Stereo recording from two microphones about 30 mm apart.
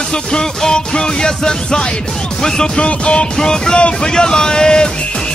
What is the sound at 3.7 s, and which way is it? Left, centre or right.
Music, left.